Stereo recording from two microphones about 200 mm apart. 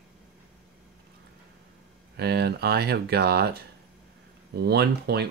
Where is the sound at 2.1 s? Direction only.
55° right (ahead or behind).